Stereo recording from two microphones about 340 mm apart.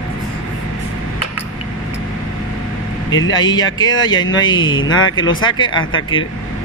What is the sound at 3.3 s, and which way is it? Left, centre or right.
Speech, centre.